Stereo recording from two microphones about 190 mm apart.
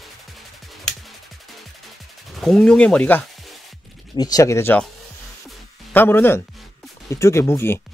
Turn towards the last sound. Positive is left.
turn(degrees=15)  # may be behind; listen again after turning